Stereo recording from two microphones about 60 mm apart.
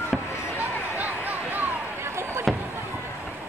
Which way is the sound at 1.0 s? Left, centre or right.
Right.